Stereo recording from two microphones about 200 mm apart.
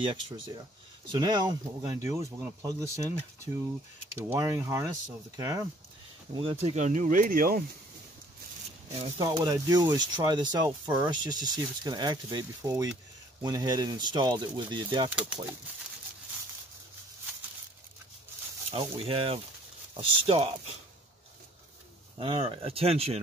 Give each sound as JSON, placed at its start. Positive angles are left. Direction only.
{"t": 1.1, "sound": "speech", "side_deg": -20}
{"t": 4.2, "sound": "speech", "side_deg": -10}
{"t": 6.4, "sound": "speech", "side_deg": -35}
{"t": 8.9, "sound": "speech", "side_deg": -30}
{"t": 18.7, "sound": "speech", "side_deg": -30}
{"t": 22.2, "sound": "speech", "side_deg": -25}